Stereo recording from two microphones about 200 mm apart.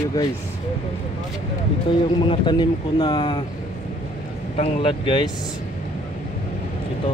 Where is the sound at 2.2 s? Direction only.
20° left (ahead or behind).